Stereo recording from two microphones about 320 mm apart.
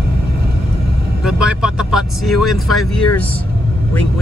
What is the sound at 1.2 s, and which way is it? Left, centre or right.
Vehicle, centre.